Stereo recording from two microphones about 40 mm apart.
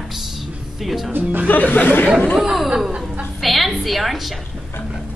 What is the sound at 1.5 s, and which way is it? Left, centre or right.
Speech, left.